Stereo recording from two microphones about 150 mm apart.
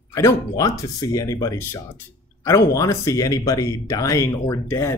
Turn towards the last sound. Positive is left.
turn(degrees=15)  # may be behind; listen again after turning